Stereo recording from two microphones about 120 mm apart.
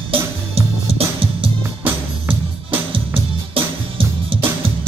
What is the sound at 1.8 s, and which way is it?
Music, 15° right (ahead or behind).